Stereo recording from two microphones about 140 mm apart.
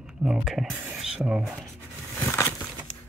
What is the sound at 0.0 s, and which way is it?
Speech, 5° right (ahead or behind).